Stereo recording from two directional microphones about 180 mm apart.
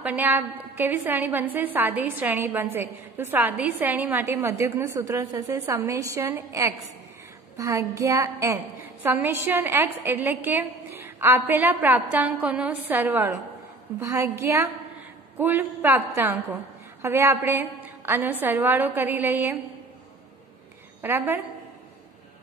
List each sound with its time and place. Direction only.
0.0 s a woman's voice: 10° right (ahead or behind)
21.0 s a woman's voice: 10° right (ahead or behind)